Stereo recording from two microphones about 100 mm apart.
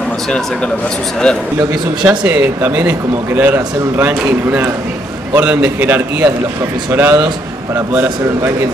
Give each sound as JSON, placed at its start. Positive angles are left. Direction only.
{"t": 1.3, "sound": "a man's voice", "side_deg": 5}
{"t": 1.6, "sound": "speech", "side_deg": -20}
{"t": 4.1, "sound": "speech", "side_deg": -10}